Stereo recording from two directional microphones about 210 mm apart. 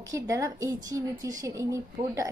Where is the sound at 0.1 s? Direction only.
15° right (ahead or behind).